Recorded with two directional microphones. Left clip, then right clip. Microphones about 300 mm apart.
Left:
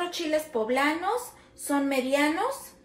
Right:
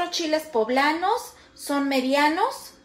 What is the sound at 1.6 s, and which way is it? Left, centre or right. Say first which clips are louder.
Speech: right 3 dB; right.